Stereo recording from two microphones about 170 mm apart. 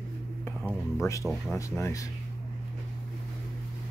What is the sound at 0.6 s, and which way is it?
Music, 5° right (ahead or behind).